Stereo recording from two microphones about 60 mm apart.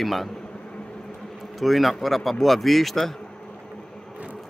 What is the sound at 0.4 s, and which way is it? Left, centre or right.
Vehicle, centre.